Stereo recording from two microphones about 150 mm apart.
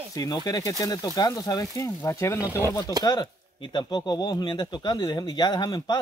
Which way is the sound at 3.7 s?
30° left (ahead or behind).